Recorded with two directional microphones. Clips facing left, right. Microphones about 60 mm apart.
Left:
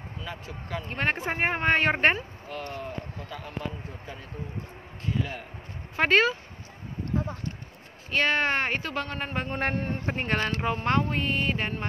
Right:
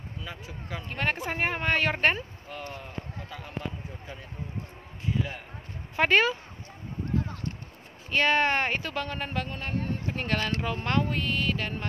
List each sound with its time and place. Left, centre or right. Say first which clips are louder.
0.2 s speech: left 3 dB; centre
0.8 s speech: left 2 dB; centre
2.5 s speech: left 3 dB; centre
5.9 s speech: left 1 dB; centre
8.1 s speech: right 1 dB; centre
9.3 s speech: left 2 dB; left
9.8 s speech: left 1 dB; left
10.1 s speech: left 1 dB; left